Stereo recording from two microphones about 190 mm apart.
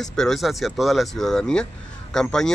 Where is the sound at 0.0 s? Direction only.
Centre (ahead or behind).